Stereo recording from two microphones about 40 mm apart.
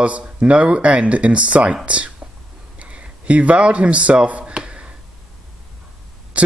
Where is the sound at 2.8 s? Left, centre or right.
Right.